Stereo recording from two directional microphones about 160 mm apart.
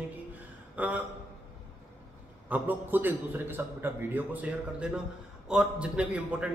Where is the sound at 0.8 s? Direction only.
10° right (ahead or behind).